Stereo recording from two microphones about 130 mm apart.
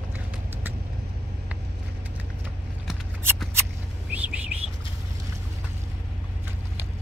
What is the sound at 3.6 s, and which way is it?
Vehicle, 10° right (ahead or behind).